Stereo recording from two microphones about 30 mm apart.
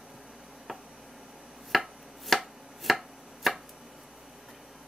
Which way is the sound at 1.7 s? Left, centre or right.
Centre.